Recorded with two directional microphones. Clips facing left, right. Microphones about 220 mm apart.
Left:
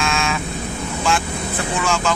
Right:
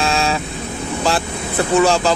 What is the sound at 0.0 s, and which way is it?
Vehicle, 35° right (ahead or behind).